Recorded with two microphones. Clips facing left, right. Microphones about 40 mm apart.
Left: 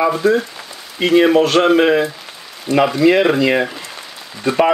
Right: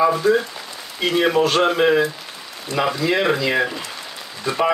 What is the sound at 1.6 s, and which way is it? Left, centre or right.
Speech, left.